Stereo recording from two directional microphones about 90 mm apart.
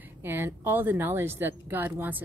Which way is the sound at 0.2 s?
25° right (ahead or behind).